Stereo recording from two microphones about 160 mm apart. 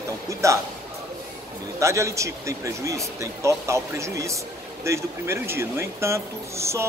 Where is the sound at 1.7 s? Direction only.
20° right (ahead or behind).